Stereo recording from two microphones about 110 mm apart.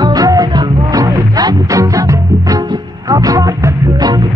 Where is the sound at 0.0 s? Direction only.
35° right (ahead or behind).